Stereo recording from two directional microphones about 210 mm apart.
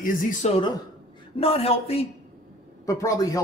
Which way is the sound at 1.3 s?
25° left (ahead or behind).